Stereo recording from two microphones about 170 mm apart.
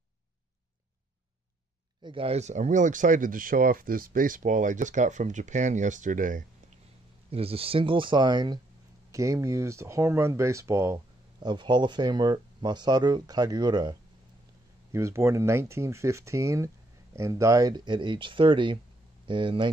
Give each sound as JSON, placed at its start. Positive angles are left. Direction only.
{"t": 2.0, "sound": "speech", "side_deg": -35}
{"t": 7.2, "sound": "speech", "side_deg": -35}